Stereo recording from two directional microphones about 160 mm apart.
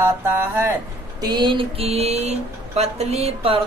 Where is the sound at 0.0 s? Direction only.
15° right (ahead or behind).